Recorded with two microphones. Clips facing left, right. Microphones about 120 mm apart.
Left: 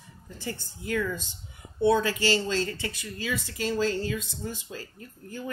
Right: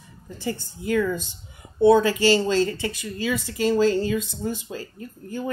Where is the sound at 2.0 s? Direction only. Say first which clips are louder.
Right 7 dB; 15° right (ahead or behind).